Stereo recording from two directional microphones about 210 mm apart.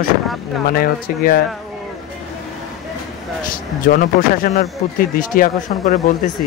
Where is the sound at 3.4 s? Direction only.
40° left (ahead or behind).